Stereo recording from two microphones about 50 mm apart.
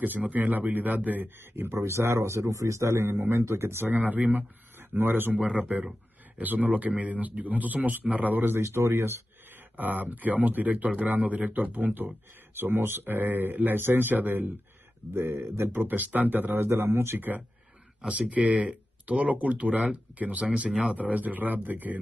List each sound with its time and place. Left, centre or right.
0.0 s speech: right
1.4 s speech: right
1.8 s a man's voice: right
3.9 s a man's voice: right
5.6 s speech: right
8.5 s a man's voice: right
9.5 s speech: right
15.1 s speech: right
16.5 s speech: right
18.0 s speech: right